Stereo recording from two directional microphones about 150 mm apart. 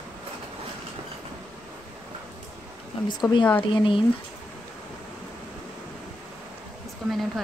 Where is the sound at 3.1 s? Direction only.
30° left (ahead or behind).